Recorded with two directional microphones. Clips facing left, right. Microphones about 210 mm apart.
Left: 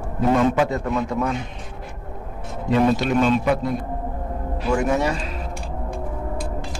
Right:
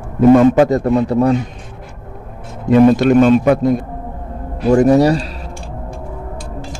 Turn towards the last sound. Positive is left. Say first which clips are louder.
# right 11 dB
turn(degrees=-35)  # may be behind; listen again after turning